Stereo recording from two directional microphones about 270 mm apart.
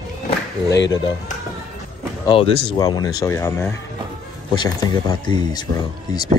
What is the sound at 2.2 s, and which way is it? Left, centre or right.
Speech, centre.